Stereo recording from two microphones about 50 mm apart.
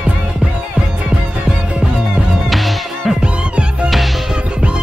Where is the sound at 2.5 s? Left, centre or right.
Centre.